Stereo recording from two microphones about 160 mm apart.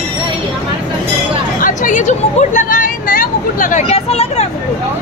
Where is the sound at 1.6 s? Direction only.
55° left (ahead or behind).